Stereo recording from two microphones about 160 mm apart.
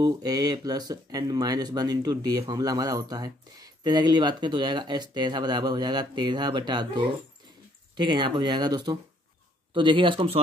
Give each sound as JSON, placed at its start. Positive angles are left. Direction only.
{"t": 0.0, "sound": "speech", "side_deg": -25}